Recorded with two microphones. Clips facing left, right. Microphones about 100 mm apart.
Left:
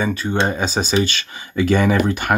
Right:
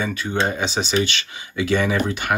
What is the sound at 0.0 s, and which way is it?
Speech, 35° left (ahead or behind).